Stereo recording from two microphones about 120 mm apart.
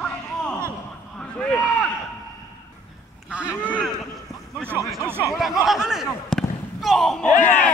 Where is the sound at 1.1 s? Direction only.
10° left (ahead or behind).